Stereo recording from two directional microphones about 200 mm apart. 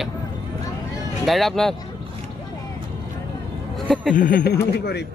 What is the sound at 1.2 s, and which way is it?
Speech, centre (ahead or behind).